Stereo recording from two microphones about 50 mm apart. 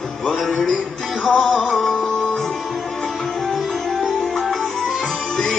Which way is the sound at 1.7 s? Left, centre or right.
Centre.